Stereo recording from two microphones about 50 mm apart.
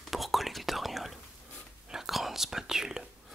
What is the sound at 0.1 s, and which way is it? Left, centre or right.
Whispering, centre.